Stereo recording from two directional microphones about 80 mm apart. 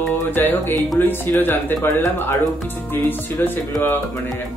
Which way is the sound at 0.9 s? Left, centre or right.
Left.